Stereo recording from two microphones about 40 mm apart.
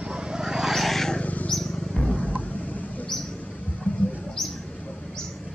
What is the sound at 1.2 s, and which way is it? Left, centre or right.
Bird, left.